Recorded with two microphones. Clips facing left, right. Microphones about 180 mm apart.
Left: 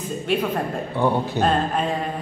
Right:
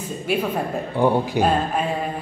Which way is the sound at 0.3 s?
10° right (ahead or behind).